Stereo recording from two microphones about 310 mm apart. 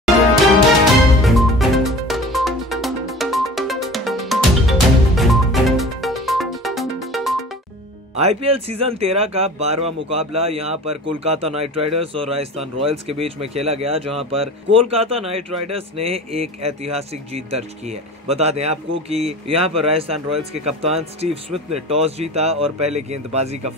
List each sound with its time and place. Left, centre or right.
1.2 s music: centre
8.2 s speech: centre